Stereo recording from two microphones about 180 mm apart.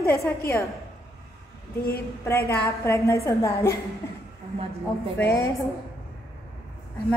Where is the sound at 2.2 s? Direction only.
15° left (ahead or behind).